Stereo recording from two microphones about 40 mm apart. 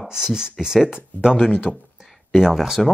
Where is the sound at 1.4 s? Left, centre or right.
Left.